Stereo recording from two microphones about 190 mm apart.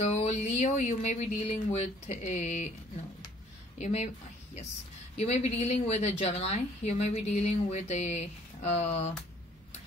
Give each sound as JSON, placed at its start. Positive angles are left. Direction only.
{"t": 0.0, "sound": "a woman's voice", "side_deg": 35}
{"t": 3.7, "sound": "a woman's voice", "side_deg": 40}
{"t": 5.1, "sound": "a woman's voice", "side_deg": 35}